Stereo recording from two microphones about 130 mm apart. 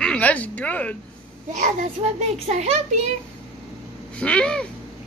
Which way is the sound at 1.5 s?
65° right (ahead or behind).